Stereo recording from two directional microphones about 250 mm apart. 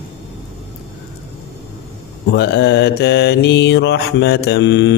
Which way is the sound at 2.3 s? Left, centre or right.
Left.